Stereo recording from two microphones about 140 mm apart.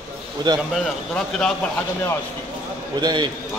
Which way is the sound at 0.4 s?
35° right (ahead or behind).